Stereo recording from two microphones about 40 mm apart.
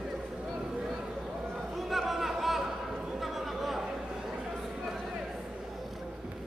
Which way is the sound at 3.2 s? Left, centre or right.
Centre.